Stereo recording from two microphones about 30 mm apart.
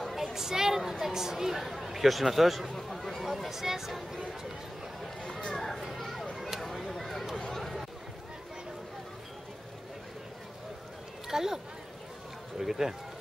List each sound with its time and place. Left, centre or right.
0.2 s a woman's voice: centre
3.3 s a woman's voice: centre
5.2 s a sound: left
5.5 s children playing: centre
6.3 s a sound: centre
11.2 s a woman's voice: centre